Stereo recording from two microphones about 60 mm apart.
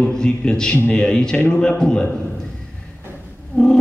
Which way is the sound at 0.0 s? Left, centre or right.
Centre.